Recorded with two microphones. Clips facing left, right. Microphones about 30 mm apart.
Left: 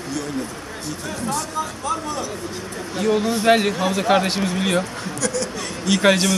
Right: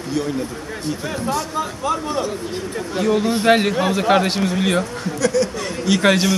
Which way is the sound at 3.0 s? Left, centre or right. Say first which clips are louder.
Right 1 dB; centre.